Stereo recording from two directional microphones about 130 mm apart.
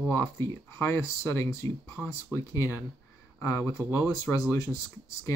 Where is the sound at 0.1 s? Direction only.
20° left (ahead or behind).